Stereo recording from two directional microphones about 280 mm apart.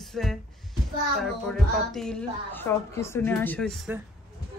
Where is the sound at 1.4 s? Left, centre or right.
Centre.